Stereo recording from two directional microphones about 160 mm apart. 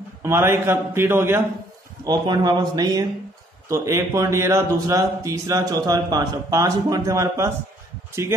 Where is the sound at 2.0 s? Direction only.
25° right (ahead or behind).